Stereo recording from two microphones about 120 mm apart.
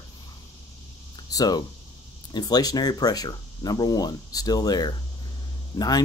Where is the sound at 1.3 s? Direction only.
35° left (ahead or behind).